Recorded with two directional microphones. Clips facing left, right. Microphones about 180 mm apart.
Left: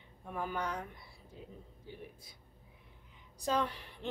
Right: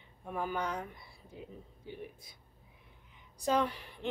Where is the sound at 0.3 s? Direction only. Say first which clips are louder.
Right 2 dB; 15° right (ahead or behind).